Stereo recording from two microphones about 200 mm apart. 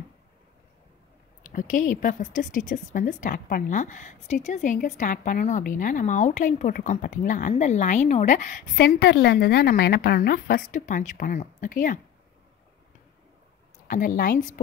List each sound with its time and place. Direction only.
1.4 s a woman's voice: 40° left (ahead or behind)
8.7 s a woman's voice: 55° left (ahead or behind)
13.8 s a woman's voice: 45° left (ahead or behind)